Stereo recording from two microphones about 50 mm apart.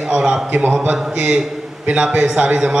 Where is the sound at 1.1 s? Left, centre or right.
Right.